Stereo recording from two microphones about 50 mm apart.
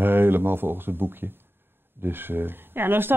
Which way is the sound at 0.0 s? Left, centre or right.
Right.